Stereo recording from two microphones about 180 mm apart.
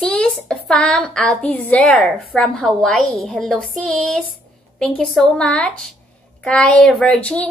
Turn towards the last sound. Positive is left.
turn(degrees=5)  # may be behind; listen again after turning